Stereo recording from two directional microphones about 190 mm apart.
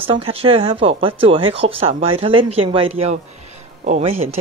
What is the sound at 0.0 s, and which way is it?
Speech, 30° right (ahead or behind).